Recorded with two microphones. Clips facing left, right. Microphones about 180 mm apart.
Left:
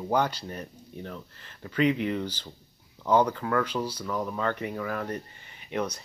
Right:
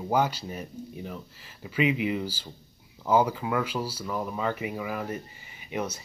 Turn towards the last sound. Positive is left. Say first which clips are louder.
# left 1 dB
turn(degrees=-5)  # may be behind; listen again after turning